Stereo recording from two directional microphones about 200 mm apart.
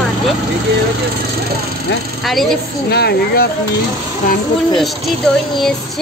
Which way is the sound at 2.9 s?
50° left (ahead or behind).